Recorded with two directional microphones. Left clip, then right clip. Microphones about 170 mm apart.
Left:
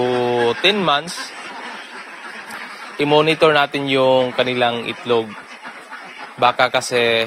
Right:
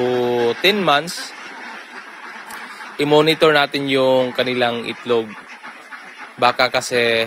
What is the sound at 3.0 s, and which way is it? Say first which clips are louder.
Speech: even; 30° right (ahead or behind).